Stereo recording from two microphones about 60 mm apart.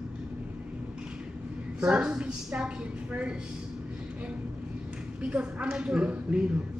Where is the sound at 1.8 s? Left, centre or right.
Centre.